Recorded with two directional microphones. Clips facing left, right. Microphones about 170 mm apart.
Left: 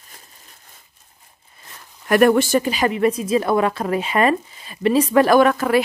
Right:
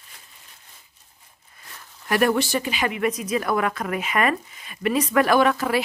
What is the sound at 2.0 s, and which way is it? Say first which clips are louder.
A woman's voice: left 6 dB; 50° left (ahead or behind).